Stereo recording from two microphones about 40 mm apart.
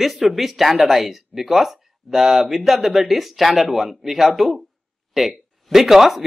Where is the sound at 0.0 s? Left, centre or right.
Centre.